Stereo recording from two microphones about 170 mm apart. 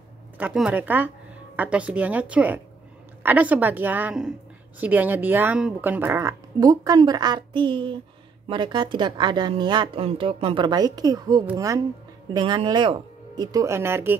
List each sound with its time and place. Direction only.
0.4 s speech: 10° right (ahead or behind)